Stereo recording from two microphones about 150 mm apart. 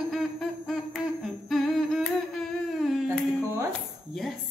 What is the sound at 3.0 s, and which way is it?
Carnatic music, 20° right (ahead or behind).